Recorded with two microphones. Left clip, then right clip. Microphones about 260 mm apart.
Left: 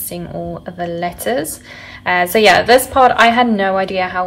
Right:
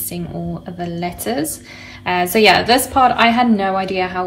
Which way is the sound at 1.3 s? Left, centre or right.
Left.